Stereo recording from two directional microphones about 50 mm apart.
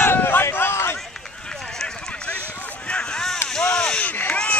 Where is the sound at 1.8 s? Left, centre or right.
Left.